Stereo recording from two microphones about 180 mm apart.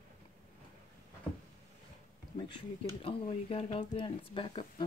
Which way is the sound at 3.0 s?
30° left (ahead or behind).